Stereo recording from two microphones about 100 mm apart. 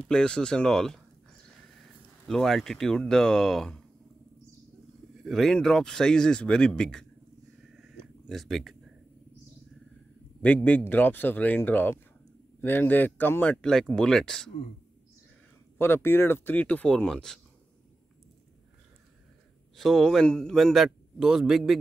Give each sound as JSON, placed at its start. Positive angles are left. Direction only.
{"t": 0.1, "sound": "speech", "side_deg": 10}
{"t": 2.2, "sound": "a man's voice", "side_deg": 5}
{"t": 5.2, "sound": "a man's voice", "side_deg": 5}
{"t": 7.8, "sound": "a sound", "side_deg": 0}
{"t": 10.4, "sound": "speech", "side_deg": 15}
{"t": 15.8, "sound": "speech", "side_deg": 25}
{"t": 19.8, "sound": "a man's voice", "side_deg": 0}